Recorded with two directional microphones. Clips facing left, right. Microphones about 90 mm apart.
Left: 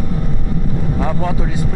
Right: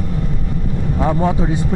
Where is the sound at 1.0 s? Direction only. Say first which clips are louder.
Right 6 dB; 25° right (ahead or behind).